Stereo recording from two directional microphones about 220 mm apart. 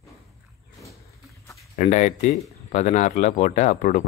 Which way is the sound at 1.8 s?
35° left (ahead or behind).